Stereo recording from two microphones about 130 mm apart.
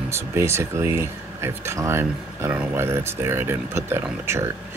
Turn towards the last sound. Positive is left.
turn(degrees=-20)  # may be behind; listen again after turning